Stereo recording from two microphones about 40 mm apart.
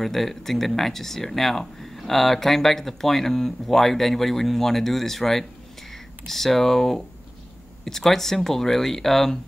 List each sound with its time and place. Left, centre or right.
0.0 s speech: centre